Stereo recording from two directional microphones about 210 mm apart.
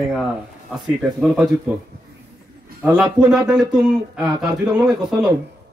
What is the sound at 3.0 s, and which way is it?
Speech, 5° right (ahead or behind).